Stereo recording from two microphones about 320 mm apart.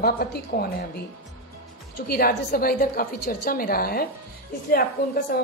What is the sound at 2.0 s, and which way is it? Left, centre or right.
A woman's voice, left.